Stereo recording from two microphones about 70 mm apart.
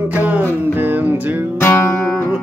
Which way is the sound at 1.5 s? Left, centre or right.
Left.